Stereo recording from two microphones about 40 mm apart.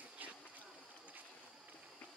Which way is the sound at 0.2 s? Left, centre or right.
Right.